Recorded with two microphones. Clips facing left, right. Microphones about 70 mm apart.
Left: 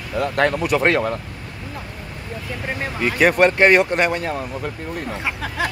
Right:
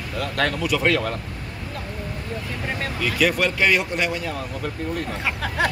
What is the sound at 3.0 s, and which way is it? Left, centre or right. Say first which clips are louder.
Speech: left 6 dB; left.